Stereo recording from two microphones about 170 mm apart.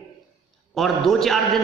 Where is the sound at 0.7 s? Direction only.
Centre (ahead or behind).